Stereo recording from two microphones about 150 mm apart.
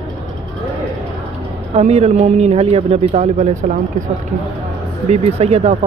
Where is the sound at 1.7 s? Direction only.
45° right (ahead or behind).